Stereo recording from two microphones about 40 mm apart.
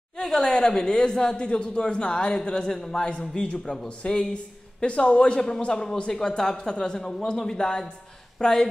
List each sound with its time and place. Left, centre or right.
0.2 s speech: centre
1.4 s a woman's voice: left